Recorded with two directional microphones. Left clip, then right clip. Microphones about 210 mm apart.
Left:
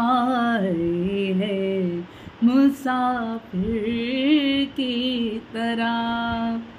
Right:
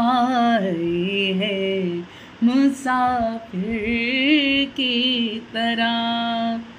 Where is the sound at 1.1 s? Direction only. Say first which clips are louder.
Right 3 dB; 10° left (ahead or behind).